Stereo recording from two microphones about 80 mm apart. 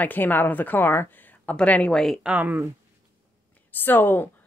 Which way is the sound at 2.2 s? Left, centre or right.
Centre.